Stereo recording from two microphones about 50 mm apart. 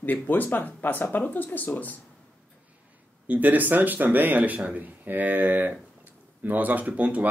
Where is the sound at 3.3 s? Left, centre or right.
Right.